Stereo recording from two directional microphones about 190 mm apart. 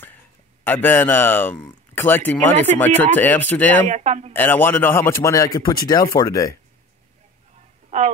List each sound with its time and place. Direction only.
0.7 s speech: 10° left (ahead or behind)
3.9 s speech: 35° right (ahead or behind)
4.3 s speech: 10° left (ahead or behind)